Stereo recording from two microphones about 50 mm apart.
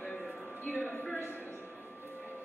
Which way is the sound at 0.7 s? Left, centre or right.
Left.